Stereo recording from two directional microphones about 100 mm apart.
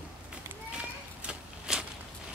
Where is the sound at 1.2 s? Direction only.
5° right (ahead or behind).